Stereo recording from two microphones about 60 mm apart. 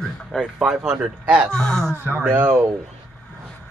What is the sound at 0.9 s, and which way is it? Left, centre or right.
Speech, right.